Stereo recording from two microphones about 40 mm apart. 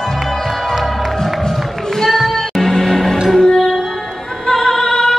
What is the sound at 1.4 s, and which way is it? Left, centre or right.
Music, centre.